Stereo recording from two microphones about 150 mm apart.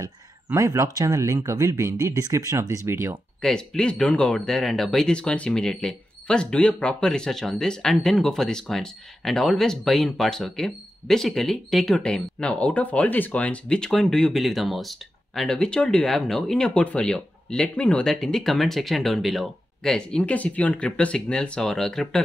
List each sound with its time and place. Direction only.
0.0 s speech: 20° right (ahead or behind)
3.3 s speech: 5° left (ahead or behind)